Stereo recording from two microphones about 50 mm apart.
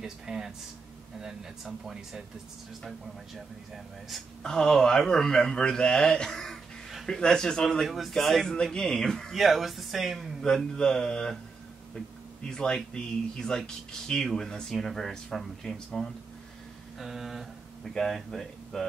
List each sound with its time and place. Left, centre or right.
0.0 s speech: centre
3.3 s speech: centre
4.4 s speech: centre
8.6 s speech: centre
9.3 s speech: centre
10.8 s speech: centre
12.4 s speech: centre